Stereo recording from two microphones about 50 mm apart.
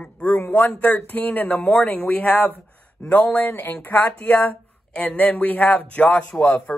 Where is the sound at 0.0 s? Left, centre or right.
Left.